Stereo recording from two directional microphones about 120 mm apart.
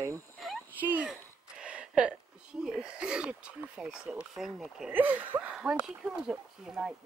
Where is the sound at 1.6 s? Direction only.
10° right (ahead or behind).